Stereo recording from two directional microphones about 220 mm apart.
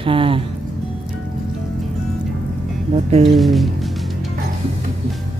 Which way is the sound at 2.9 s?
30° right (ahead or behind).